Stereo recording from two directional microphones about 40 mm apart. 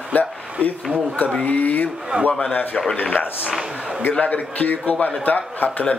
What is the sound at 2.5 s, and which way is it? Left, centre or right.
A man's voice, left.